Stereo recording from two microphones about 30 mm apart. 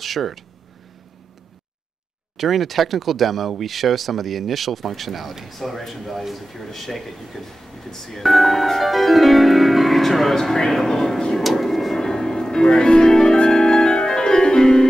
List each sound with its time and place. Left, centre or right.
0.0 s speech: centre
2.3 s speech: centre
11.3 s a sound: centre
12.0 s music: centre